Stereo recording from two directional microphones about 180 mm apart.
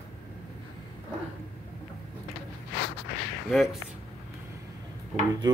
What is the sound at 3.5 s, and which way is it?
Speech, centre (ahead or behind).